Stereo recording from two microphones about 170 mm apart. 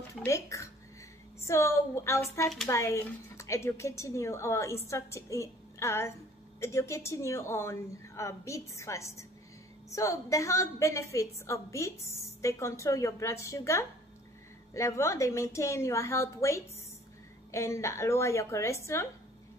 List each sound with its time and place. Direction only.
0.1 s a woman's voice: 15° left (ahead or behind)